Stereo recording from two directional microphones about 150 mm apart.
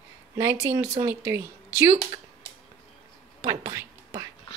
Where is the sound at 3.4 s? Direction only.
25° right (ahead or behind).